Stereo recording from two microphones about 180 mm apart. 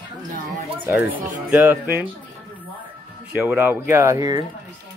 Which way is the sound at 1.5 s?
10° right (ahead or behind).